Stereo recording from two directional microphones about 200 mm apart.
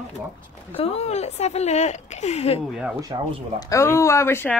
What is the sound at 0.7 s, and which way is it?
A woman's voice, 30° left (ahead or behind).